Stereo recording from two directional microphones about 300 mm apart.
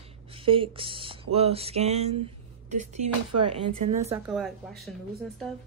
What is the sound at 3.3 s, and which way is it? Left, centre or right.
Speech, right.